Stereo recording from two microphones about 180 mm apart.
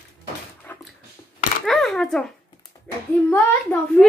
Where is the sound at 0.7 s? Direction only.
10° left (ahead or behind).